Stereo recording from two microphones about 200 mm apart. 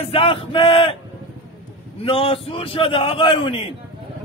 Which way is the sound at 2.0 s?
30° left (ahead or behind).